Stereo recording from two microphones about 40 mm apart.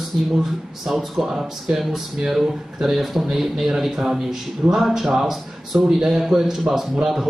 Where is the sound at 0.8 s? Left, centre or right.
Centre.